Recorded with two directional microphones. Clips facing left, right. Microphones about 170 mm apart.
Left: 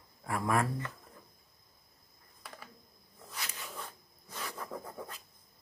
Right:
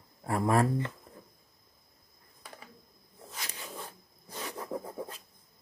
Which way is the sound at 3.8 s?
30° right (ahead or behind).